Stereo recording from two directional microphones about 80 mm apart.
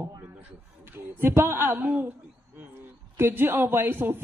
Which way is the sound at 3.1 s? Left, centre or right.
Right.